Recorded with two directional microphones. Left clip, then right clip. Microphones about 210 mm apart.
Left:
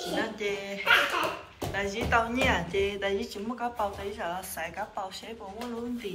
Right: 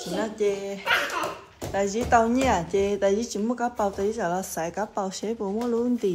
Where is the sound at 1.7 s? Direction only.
30° right (ahead or behind).